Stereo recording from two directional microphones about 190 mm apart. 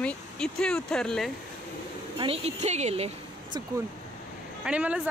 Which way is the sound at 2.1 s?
30° right (ahead or behind).